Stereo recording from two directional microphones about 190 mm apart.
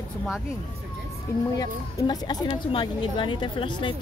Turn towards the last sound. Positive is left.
turn(degrees=25)  # may be behind; listen again after turning